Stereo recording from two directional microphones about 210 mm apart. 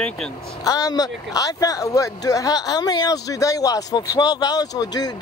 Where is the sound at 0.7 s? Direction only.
15° left (ahead or behind).